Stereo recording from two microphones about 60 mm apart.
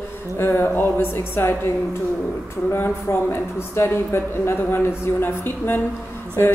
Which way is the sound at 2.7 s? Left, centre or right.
Left.